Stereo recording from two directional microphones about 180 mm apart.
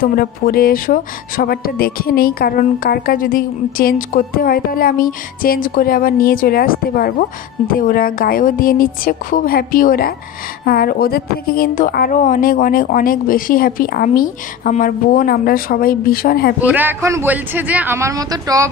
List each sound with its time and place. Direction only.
0.0 s a woman's voice: 55° left (ahead or behind)
16.5 s a man's voice: 10° right (ahead or behind)